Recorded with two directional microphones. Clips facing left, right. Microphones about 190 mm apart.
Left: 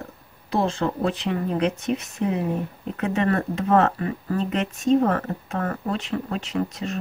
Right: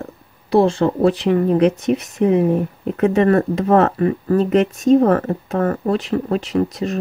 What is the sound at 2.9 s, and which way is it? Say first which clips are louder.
Speech: right 9 dB; 35° right (ahead or behind).